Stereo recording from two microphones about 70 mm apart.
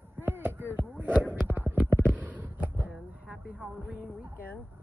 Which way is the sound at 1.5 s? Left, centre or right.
Right.